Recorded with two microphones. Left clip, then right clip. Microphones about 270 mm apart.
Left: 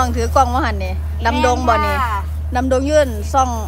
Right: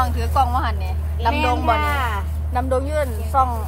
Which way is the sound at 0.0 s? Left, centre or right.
Left.